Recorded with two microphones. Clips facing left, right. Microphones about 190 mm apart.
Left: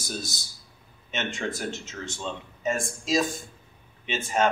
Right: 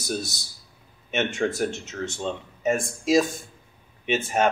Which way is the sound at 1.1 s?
60° right (ahead or behind).